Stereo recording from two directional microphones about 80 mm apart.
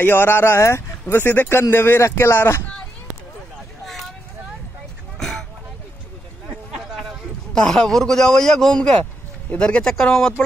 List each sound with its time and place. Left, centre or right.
0.0 s speech: left
6.8 s a sound: centre
7.5 s a man's voice: centre